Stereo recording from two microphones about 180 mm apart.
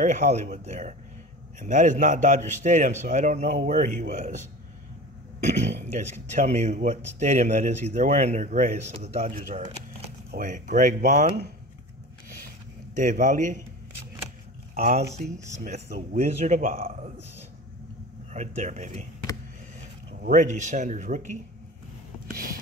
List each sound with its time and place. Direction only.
0.0 s a man's voice: 40° right (ahead or behind)
12.9 s a man's voice: 45° right (ahead or behind)
14.7 s speech: 55° right (ahead or behind)
15.5 s a man's voice: 45° right (ahead or behind)
18.3 s speech: 45° right (ahead or behind)
20.2 s a man's voice: 45° right (ahead or behind)
22.3 s a sound: 50° right (ahead or behind)